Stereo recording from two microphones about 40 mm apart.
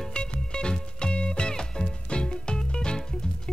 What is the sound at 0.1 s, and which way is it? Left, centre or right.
Music, left.